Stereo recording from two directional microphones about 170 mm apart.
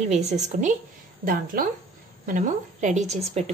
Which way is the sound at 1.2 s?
55° right (ahead or behind).